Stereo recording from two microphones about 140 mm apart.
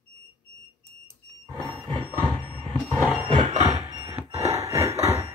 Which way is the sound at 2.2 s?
35° right (ahead or behind).